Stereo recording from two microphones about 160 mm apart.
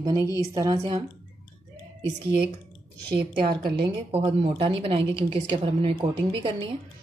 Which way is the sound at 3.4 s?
70° right (ahead or behind).